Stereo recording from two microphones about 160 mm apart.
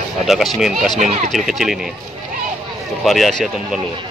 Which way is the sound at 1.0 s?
45° right (ahead or behind).